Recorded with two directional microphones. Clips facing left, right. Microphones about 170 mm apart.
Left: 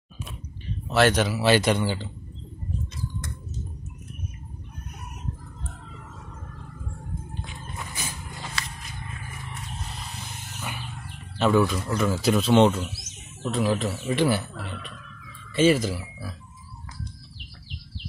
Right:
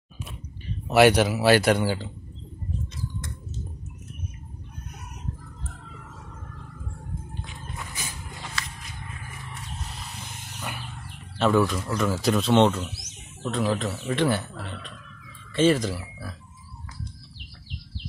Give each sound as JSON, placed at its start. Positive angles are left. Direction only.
{"t": 0.8, "sound": "speech", "side_deg": -15}
{"t": 8.6, "sound": "walk", "side_deg": 20}
{"t": 11.3, "sound": "speech", "side_deg": 0}